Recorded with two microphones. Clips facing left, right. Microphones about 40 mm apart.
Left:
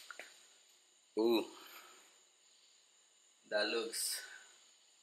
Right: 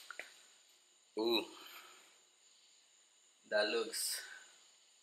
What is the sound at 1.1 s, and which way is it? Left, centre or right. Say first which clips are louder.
Speech: left 3 dB; right.